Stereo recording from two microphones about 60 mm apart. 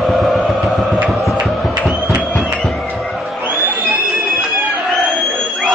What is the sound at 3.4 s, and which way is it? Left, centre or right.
Crowd, right.